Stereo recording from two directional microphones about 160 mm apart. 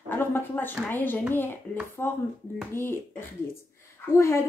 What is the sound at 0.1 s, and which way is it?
Speech, 15° left (ahead or behind).